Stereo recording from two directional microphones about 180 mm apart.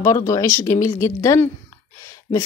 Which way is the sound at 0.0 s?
20° left (ahead or behind).